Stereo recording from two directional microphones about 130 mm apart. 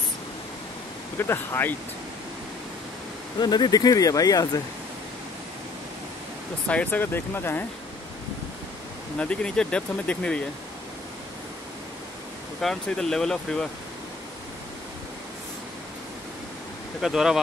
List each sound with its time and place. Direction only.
1.1 s speech: 20° left (ahead or behind)
3.3 s speech: 35° left (ahead or behind)
6.7 s speech: 10° left (ahead or behind)
9.2 s speech: 5° left (ahead or behind)
12.6 s speech: 5° left (ahead or behind)
17.0 s speech: 5° right (ahead or behind)